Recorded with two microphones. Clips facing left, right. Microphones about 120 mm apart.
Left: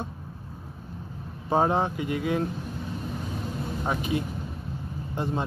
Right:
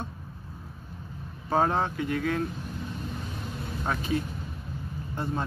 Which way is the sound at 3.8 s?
15° left (ahead or behind).